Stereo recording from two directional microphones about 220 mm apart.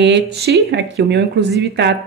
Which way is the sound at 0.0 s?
55° right (ahead or behind).